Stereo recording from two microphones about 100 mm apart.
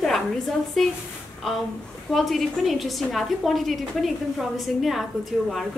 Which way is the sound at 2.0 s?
Centre (ahead or behind).